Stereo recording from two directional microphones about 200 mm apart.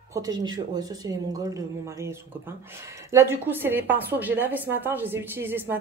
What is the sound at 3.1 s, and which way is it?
A woman's voice, 10° right (ahead or behind).